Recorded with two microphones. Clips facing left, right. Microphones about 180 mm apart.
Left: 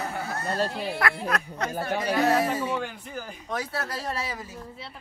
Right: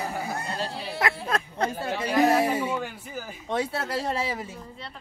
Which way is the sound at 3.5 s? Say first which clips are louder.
Right 4 dB; 25° right (ahead or behind).